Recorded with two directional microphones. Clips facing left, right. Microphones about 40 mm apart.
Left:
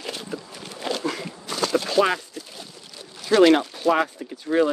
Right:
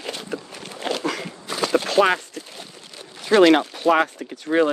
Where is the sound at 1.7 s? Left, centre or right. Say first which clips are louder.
Right 3 dB; right.